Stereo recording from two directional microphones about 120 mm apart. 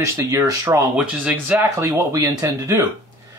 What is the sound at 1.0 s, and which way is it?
Speech, 10° right (ahead or behind).